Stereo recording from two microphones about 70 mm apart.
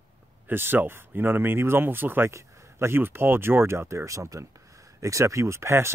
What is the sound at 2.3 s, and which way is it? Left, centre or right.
Speech, right.